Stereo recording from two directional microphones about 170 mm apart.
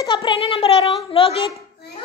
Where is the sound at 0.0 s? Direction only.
30° left (ahead or behind).